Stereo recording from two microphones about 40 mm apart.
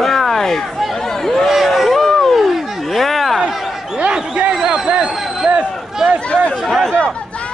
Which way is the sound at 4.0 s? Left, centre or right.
Right.